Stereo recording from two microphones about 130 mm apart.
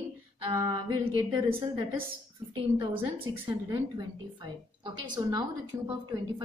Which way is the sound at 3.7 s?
35° right (ahead or behind).